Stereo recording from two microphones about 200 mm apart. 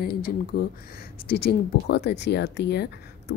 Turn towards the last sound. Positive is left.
turn(degrees=55)  # may be behind; listen again after turning